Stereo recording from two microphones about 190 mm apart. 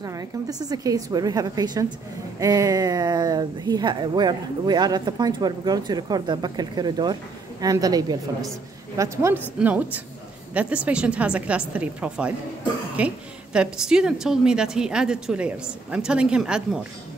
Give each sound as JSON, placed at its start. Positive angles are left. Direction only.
{"t": 0.0, "sound": "a woman's voice", "side_deg": -20}